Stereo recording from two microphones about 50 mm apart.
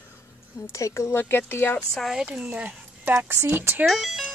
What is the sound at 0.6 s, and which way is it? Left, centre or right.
Speech, left.